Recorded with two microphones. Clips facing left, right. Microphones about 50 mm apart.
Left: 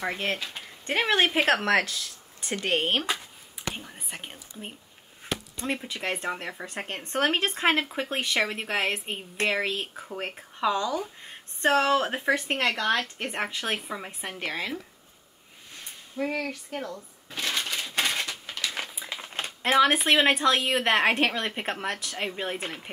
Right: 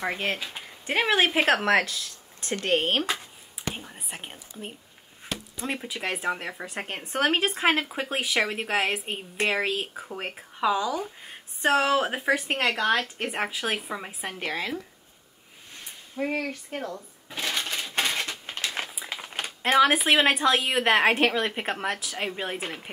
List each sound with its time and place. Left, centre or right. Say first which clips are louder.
0.0 s speech: right 1 dB; centre
16.2 s speech: right 1 dB; right
17.3 s crushing: even; centre
18.2 s crushing: right 1 dB; right
18.9 s speech: right 1 dB; centre